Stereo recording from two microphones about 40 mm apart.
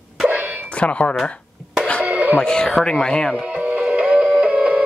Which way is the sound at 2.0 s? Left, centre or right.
Right.